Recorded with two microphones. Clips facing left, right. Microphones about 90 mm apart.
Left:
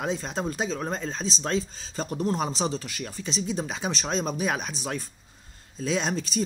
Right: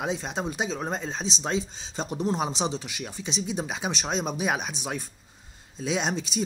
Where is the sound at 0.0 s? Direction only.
10° right (ahead or behind).